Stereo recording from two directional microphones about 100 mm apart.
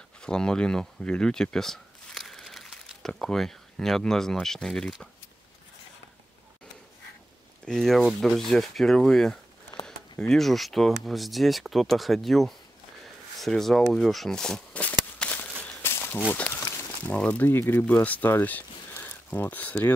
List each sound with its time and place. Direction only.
0.2 s speech: 10° left (ahead or behind)
7.6 s speech: 5° left (ahead or behind)
13.9 s a sound: centre (ahead or behind); by 16.2 s 20° left (ahead or behind)
16.3 s speech: 15° left (ahead or behind)